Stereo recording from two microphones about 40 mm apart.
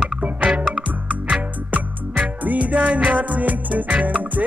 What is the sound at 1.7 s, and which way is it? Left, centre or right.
Music, right.